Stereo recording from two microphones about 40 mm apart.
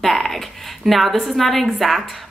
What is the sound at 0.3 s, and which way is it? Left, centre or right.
Speech, centre.